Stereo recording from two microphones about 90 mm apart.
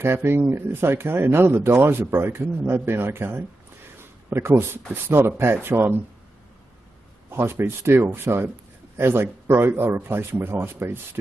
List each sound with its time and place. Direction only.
0.0 s speech: 25° right (ahead or behind)
4.0 s a sound: 25° right (ahead or behind)
5.0 s speech: 25° right (ahead or behind)
7.2 s speech: 25° right (ahead or behind)